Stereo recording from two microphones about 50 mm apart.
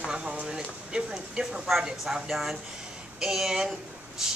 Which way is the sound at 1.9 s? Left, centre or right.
Centre.